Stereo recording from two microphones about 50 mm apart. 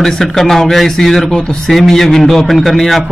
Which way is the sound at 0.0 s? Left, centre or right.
Centre.